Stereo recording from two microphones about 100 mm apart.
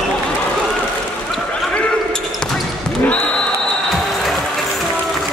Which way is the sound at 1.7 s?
10° left (ahead or behind).